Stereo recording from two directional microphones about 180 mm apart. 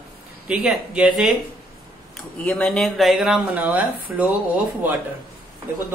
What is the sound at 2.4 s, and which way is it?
A man's voice, 5° left (ahead or behind).